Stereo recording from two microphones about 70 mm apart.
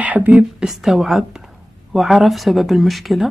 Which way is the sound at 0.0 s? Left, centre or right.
Right.